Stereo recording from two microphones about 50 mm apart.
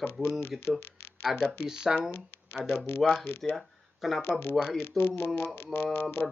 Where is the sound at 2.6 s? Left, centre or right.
Left.